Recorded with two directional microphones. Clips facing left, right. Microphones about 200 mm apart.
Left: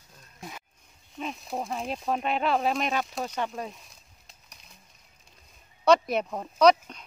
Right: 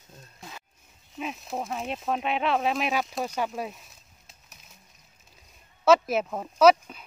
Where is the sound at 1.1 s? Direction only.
Centre (ahead or behind).